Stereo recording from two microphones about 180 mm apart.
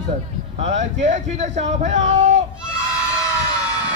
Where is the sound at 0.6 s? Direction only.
40° right (ahead or behind).